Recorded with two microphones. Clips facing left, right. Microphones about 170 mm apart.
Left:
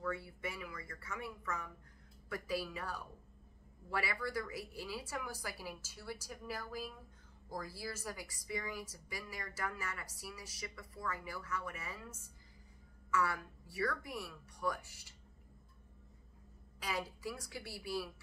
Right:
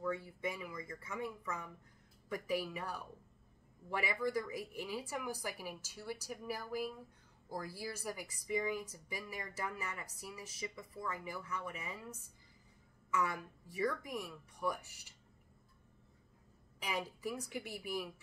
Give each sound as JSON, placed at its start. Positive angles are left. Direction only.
{"t": 0.0, "sound": "speech", "side_deg": -15}
{"t": 16.8, "sound": "speech", "side_deg": -15}